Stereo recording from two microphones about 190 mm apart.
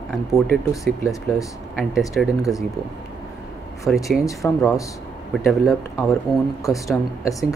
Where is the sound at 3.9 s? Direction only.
Centre (ahead or behind).